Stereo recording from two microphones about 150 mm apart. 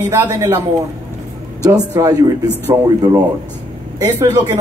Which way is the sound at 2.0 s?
25° right (ahead or behind).